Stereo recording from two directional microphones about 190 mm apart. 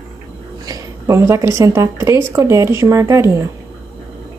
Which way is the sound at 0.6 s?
20° right (ahead or behind).